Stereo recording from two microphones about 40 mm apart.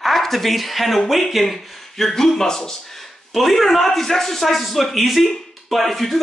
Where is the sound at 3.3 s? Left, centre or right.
Centre.